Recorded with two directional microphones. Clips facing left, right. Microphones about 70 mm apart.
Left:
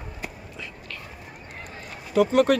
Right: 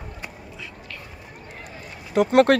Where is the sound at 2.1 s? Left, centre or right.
Right.